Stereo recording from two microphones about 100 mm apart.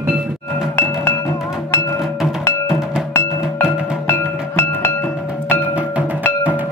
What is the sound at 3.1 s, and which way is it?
Music, 25° left (ahead or behind).